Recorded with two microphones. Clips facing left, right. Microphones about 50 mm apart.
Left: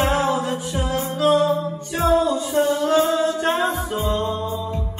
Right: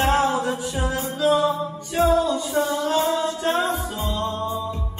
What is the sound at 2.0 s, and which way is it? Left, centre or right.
Music, left.